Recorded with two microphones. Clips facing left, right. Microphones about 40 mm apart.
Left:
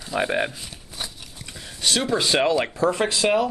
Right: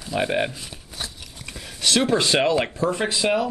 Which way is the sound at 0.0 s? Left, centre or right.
Centre.